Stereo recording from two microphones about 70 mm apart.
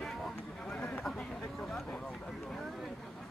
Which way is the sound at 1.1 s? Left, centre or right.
Centre.